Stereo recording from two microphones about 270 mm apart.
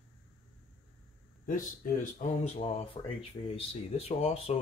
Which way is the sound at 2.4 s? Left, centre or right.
Left.